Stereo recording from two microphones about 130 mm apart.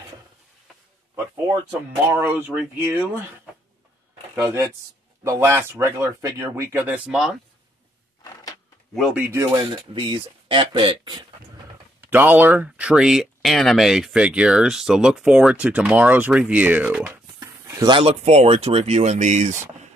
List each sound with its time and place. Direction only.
2.0 s speech: 15° right (ahead or behind)
5.2 s speech: 20° right (ahead or behind)
7.1 s speech: centre (ahead or behind)
9.1 s speech: 15° right (ahead or behind)
9.9 s speech: 40° right (ahead or behind)
12.1 s speech: 15° right (ahead or behind)
17.1 s a sound: 25° right (ahead or behind)
17.9 s speech: 50° right (ahead or behind)